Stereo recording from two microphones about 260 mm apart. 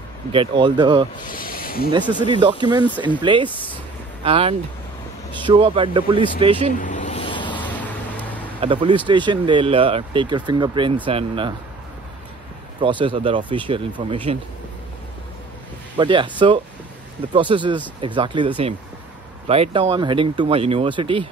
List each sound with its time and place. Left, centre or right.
0.3 s speech: centre
1.1 s speech: left
2.1 s speech: centre
6.7 s a sound: left
8.5 s speech: centre
12.8 s speech: centre
16.0 s speech: centre